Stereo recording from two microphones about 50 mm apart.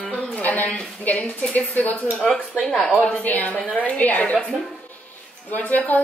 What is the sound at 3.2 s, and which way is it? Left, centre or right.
A woman's voice, left.